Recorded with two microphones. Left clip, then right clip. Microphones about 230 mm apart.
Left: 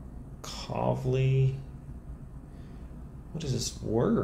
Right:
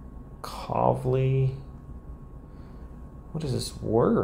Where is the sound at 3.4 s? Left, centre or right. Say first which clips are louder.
Right 2 dB; centre.